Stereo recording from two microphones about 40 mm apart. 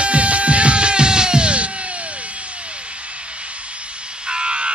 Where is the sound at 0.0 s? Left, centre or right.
Right.